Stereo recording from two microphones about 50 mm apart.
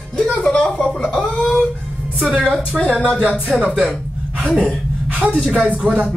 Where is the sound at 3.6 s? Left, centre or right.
Centre.